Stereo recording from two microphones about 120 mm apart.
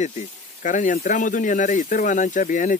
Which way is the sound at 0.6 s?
90° left.